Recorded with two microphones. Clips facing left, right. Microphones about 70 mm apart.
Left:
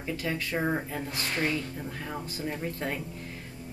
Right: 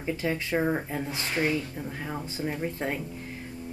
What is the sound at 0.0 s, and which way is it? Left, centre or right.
Speech, right.